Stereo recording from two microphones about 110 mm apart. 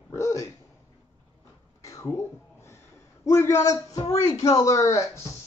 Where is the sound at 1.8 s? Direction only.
30° left (ahead or behind).